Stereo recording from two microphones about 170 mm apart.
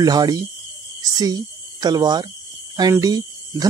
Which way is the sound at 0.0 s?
25° right (ahead or behind).